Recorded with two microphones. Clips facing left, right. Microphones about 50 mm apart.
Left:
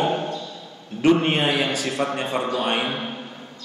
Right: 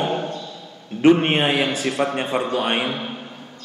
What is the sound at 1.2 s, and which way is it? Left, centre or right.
A man's voice, right.